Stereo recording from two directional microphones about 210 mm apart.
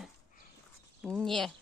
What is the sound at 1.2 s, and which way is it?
Speech, centre (ahead or behind).